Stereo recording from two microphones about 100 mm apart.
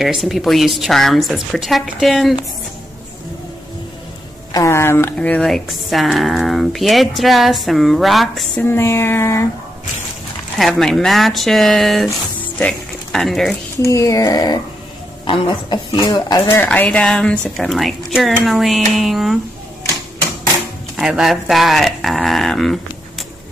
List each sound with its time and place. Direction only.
0.0 s a woman's voice: centre (ahead or behind)
4.5 s speech: 30° left (ahead or behind)
5.1 s speech: 15° left (ahead or behind)
5.4 s a woman's voice: centre (ahead or behind)
8.6 s speech: 25° left (ahead or behind)
10.6 s a woman's voice: centre (ahead or behind)
13.8 s speech: 30° left (ahead or behind)
15.2 s speech: 60° left (ahead or behind)
16.1 s speech: 40° left (ahead or behind)
16.4 s speech: 20° left (ahead or behind)
17.6 s a woman's voice: centre (ahead or behind)
20.9 s speech: 5° right (ahead or behind)